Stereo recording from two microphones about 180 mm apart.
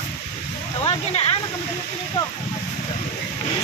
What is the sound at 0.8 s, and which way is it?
Speech, 35° left (ahead or behind).